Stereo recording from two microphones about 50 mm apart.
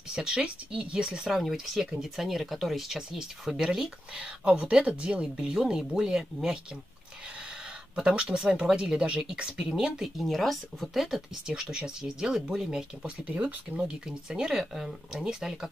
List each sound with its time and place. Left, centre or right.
0.1 s speech: centre
4.6 s speech: right
7.9 s speech: right
10.1 s speech: centre
13.3 s speech: right
13.8 s speech: centre